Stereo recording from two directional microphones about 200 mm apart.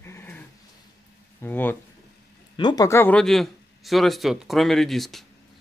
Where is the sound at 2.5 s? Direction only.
20° left (ahead or behind); by 5.2 s centre (ahead or behind).